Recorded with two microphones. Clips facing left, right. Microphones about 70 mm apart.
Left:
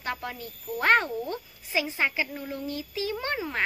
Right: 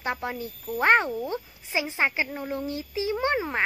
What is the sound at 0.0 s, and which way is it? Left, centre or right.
Speech, right.